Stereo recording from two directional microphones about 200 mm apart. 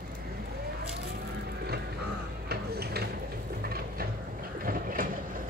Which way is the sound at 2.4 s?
50° right (ahead or behind).